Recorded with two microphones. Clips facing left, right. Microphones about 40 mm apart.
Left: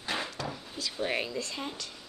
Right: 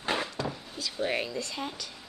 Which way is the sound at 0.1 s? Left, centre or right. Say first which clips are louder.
Even; centre.